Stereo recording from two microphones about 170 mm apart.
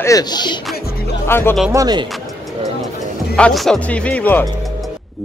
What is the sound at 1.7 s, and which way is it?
Speech, 25° right (ahead or behind).